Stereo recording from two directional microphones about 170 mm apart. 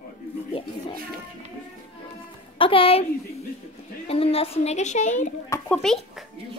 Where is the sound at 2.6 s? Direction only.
30° left (ahead or behind).